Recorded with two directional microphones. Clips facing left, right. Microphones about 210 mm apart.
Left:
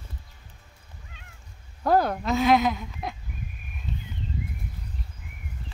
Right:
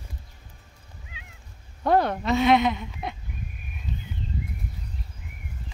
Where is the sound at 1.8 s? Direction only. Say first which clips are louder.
Even; centre (ahead or behind).